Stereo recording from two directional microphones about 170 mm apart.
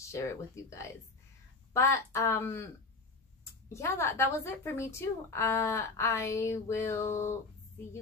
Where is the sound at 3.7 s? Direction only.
15° left (ahead or behind).